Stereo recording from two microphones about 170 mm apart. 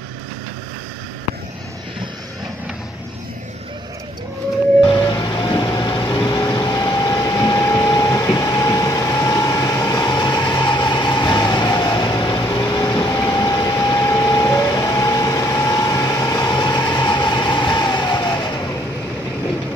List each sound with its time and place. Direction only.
4.8 s vehicle: 25° left (ahead or behind)